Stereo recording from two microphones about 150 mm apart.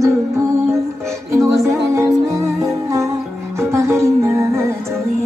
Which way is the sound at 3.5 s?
20° right (ahead or behind).